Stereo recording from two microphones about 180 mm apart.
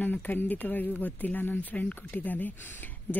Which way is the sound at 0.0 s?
10° left (ahead or behind).